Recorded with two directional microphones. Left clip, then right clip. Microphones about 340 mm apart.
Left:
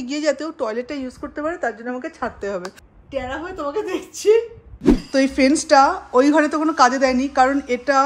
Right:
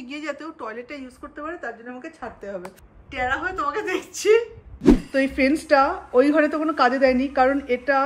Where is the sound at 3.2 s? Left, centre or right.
Centre.